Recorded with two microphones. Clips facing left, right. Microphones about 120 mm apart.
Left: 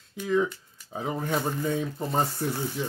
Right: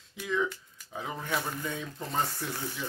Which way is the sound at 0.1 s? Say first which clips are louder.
Left 6 dB; 40° left (ahead or behind).